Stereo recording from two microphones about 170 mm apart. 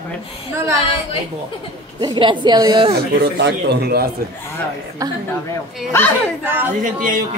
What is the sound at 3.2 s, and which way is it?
Speech, 75° right (ahead or behind).